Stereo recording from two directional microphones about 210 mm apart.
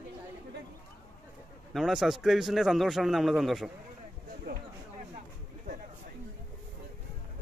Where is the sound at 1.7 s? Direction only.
Centre (ahead or behind).